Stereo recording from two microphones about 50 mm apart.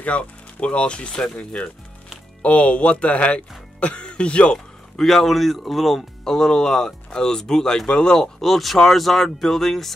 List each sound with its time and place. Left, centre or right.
0.0 s speech: left
2.4 s speech: left
4.9 s speech: centre
8.4 s speech: centre